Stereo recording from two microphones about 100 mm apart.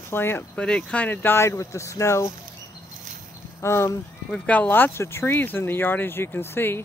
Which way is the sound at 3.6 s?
25° left (ahead or behind).